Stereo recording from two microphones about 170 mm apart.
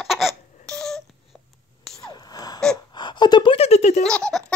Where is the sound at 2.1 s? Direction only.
25° left (ahead or behind).